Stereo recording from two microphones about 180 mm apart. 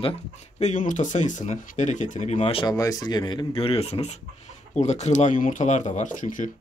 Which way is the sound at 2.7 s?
20° left (ahead or behind).